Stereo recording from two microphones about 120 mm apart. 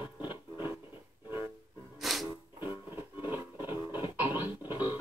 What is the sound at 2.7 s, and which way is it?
Music, 15° right (ahead or behind).